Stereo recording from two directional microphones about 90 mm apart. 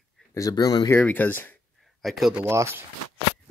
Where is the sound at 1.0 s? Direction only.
15° left (ahead or behind).